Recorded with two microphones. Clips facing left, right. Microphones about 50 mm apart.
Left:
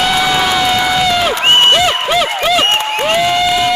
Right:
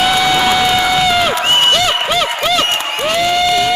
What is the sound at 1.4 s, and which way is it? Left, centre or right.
Crowd, left.